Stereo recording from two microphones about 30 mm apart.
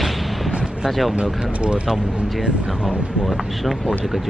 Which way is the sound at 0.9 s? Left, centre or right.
Centre.